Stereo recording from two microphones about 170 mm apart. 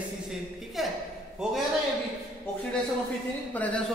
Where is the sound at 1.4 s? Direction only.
5° right (ahead or behind).